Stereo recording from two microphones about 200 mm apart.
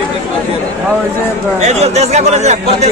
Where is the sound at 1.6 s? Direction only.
35° right (ahead or behind).